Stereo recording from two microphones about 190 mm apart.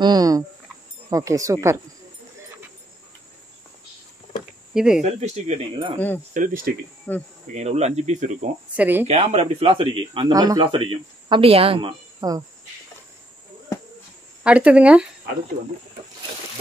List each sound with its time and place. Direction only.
0.0 s speech: 20° right (ahead or behind)
4.7 s speech: 5° right (ahead or behind)
5.0 s speech: 35° right (ahead or behind)
5.9 s speech: 10° left (ahead or behind)
6.3 s speech: 45° right (ahead or behind)
7.1 s speech: 10° left (ahead or behind)
7.5 s speech: 35° right (ahead or behind)
8.7 s speech: 10° right (ahead or behind)
9.1 s speech: 35° right (ahead or behind)
14.4 s speech: 5° right (ahead or behind)